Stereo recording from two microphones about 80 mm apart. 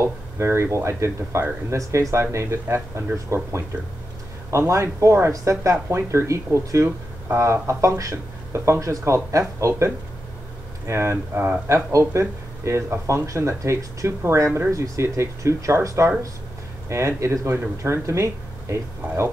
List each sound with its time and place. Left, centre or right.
0.0 s speech: right